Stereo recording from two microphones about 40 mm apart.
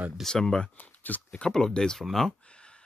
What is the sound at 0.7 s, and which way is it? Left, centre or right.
Speech, left.